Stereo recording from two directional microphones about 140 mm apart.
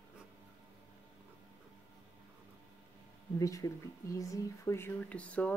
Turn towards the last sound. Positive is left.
turn(degrees=10)  # may be behind; listen again after turning